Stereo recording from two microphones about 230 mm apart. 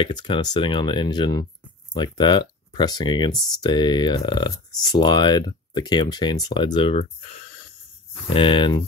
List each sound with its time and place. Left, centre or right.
0.0 s speech: left
8.3 s speech: left